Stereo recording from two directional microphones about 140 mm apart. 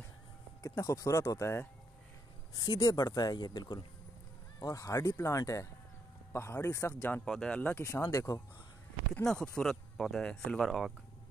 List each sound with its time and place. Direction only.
0.6 s speech: 25° left (ahead or behind)
9.2 s speech: 5° left (ahead or behind)